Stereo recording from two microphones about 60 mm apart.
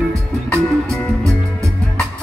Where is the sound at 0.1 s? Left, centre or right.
Right.